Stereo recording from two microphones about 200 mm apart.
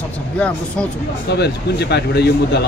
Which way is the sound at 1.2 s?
55° left (ahead or behind).